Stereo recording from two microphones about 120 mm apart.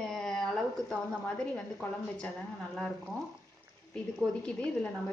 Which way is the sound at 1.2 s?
10° left (ahead or behind).